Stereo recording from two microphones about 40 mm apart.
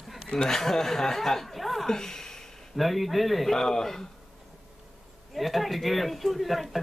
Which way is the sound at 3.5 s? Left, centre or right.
Centre.